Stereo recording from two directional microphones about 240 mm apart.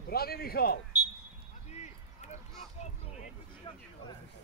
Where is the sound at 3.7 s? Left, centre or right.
Centre.